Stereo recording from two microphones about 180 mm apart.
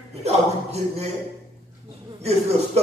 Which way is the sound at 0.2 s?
35° right (ahead or behind).